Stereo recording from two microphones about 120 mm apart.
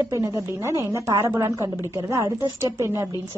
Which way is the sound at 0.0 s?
25° right (ahead or behind).